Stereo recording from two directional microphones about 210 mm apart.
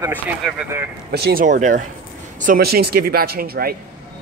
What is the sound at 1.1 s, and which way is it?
Speech, 50° right (ahead or behind).